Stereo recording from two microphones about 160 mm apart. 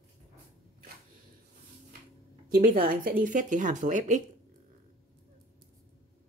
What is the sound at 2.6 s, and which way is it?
Speech, 60° right (ahead or behind).